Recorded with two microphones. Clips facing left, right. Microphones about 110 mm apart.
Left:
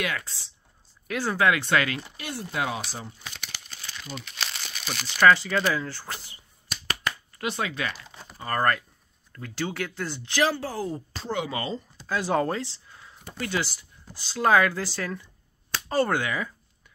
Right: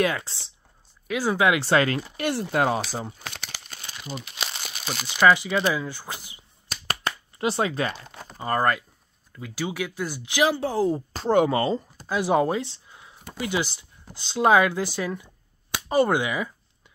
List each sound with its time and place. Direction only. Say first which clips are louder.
0.0 s speech: right 6 dB; 30° right (ahead or behind)
1.0 s speech: right 2 dB; 10° right (ahead or behind)
1.6 s speech: right 4 dB; 30° right (ahead or behind)
2.1 s speech: right 8 dB; 60° right (ahead or behind)
3.4 s crumpling: right 2 dB; 50° right (ahead or behind)
3.8 s crumpling: right 2 dB; 15° right (ahead or behind)
4.5 s crumpling: right 2 dB; 25° right (ahead or behind)
5.0 s speech: even; 15° right (ahead or behind)
6.7 s a sound: right 2 dB; 35° right (ahead or behind)
8.4 s speech: right 2 dB; 15° right (ahead or behind)
11.1 s speech: right 11 dB; 50° right (ahead or behind)
12.1 s speech: right 3 dB; 15° right (ahead or behind)